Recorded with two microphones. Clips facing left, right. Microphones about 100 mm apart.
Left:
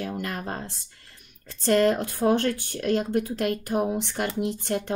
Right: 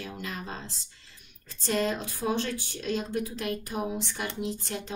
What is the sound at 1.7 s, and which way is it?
A woman's voice, 65° left (ahead or behind).